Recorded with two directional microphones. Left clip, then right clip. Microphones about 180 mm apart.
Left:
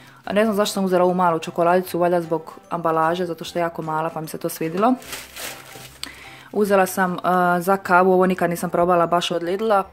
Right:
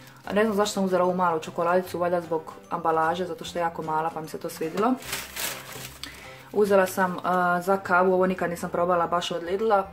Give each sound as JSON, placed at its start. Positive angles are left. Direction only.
{"t": 0.3, "sound": "speech", "side_deg": 50}
{"t": 6.6, "sound": "speech", "side_deg": 50}